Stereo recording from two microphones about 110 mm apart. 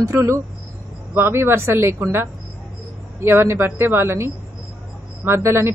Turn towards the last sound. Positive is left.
turn(degrees=-25)  # may be behind; listen again after turning